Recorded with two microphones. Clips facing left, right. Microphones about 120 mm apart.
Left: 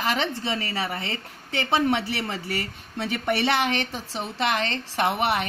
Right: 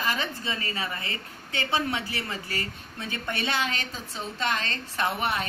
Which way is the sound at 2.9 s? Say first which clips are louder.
Left 8 dB; 90° left.